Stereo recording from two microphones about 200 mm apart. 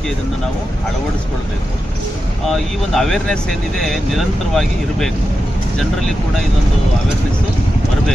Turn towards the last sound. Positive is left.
turn(degrees=0)  # may be behind; listen again after turning